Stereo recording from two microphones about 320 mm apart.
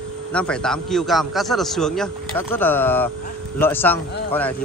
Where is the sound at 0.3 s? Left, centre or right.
Centre.